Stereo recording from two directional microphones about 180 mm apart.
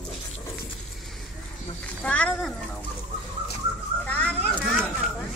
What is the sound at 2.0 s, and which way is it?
Speech, 5° left (ahead or behind).